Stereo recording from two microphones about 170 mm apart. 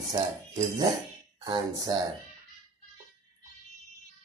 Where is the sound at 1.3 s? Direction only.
25° right (ahead or behind).